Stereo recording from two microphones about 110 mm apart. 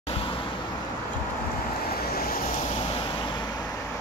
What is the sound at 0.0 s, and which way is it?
Vehicle, 55° left (ahead or behind).